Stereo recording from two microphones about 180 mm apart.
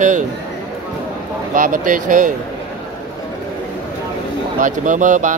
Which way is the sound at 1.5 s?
50° right (ahead or behind).